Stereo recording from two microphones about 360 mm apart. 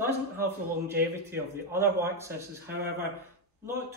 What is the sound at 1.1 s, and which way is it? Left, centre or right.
Speech, centre.